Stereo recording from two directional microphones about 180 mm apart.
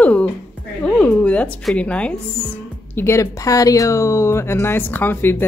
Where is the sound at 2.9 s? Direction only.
15° left (ahead or behind).